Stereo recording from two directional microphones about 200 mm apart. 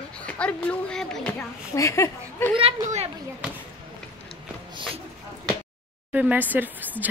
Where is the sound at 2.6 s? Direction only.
30° right (ahead or behind).